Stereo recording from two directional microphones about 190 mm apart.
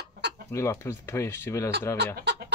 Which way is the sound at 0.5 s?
15° left (ahead or behind).